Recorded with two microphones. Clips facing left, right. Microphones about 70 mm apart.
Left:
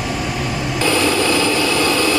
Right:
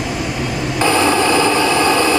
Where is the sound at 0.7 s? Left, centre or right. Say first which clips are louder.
Right 3 dB; right.